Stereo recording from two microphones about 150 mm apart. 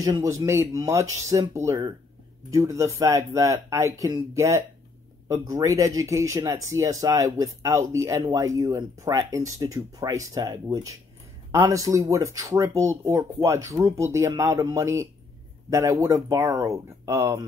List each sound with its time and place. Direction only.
0.0 s speech: 20° right (ahead or behind)